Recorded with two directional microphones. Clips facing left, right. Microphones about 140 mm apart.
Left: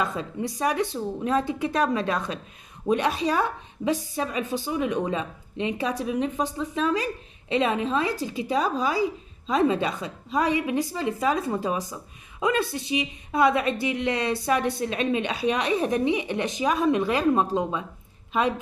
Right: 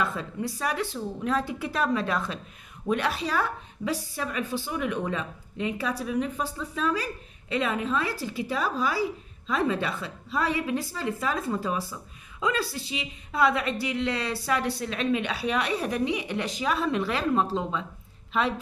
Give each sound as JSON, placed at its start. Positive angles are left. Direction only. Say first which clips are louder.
{"t": 0.0, "sound": "a woman's voice", "louder": "left 2 dB", "side_deg": 20}